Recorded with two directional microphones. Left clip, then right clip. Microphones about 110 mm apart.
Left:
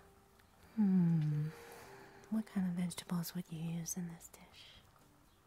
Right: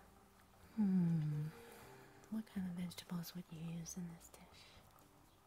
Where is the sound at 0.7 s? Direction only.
35° left (ahead or behind).